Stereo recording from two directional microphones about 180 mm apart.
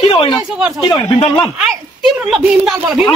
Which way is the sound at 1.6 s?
5° right (ahead or behind).